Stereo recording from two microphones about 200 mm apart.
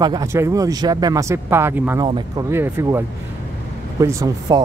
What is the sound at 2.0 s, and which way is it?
Speech, 25° right (ahead or behind).